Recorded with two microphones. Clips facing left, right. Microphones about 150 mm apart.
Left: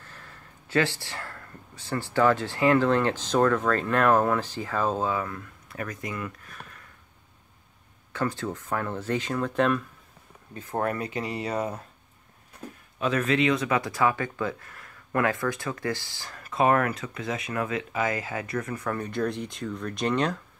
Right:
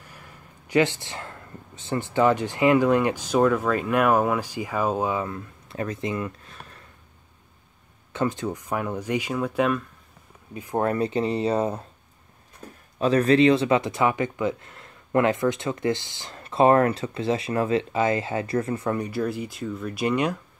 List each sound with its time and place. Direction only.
0.0 s speech: 15° right (ahead or behind)
8.1 s speech: 20° right (ahead or behind)
10.9 s speech: 30° right (ahead or behind)
13.0 s speech: 35° right (ahead or behind)
18.9 s speech: 5° right (ahead or behind)